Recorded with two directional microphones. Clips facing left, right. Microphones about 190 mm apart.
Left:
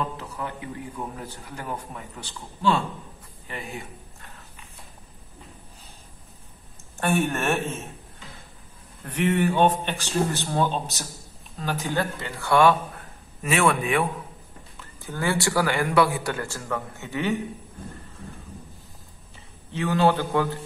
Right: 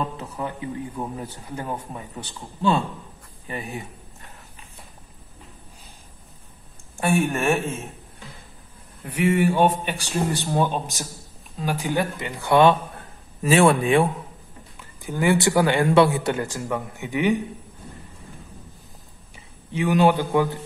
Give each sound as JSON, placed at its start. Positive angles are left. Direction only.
{"t": 0.2, "sound": "speech", "side_deg": -25}
{"t": 7.0, "sound": "a man's voice", "side_deg": -10}
{"t": 9.0, "sound": "a man's voice", "side_deg": -10}
{"t": 13.4, "sound": "speech", "side_deg": -30}
{"t": 15.0, "sound": "speech", "side_deg": -15}
{"t": 19.3, "sound": "a man's voice", "side_deg": -15}